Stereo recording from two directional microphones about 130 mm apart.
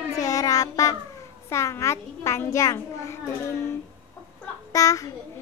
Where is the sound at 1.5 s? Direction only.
20° left (ahead or behind).